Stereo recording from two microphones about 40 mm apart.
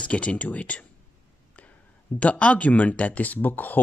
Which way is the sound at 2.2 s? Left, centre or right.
Left.